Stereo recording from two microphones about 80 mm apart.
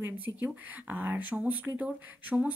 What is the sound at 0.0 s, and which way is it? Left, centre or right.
Speech, right.